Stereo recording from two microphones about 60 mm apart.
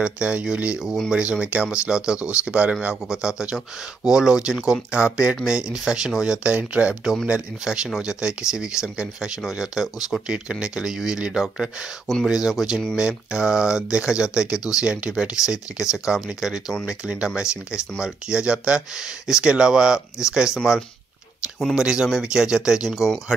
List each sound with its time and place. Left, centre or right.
0.0 s speech: centre
6.4 s speech: right
17.0 s speech: centre